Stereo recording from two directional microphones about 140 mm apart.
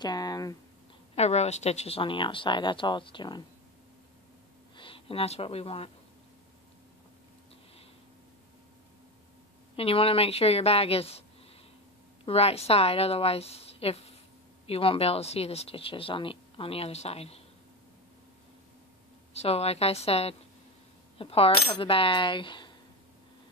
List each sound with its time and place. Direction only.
0.0 s speech: 30° left (ahead or behind)
1.1 s speech: 50° left (ahead or behind); by 3.4 s 35° left (ahead or behind)
4.7 s speech: 40° left (ahead or behind)
9.8 s speech: 45° left (ahead or behind)
12.3 s speech: 45° left (ahead or behind)
19.3 s speech: 45° left (ahead or behind)